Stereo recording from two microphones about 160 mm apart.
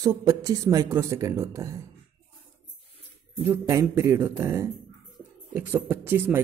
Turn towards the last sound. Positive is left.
turn(degrees=-10)  # may be behind; listen again after turning